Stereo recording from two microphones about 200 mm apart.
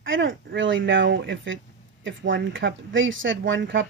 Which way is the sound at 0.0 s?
75° right (ahead or behind).